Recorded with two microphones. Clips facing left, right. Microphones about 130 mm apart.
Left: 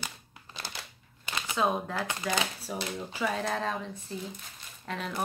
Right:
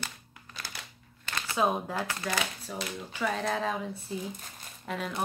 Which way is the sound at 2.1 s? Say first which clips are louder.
Left 1 dB; 20° left (ahead or behind).